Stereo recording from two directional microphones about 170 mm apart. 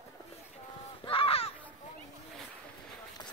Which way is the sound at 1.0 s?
30° left (ahead or behind).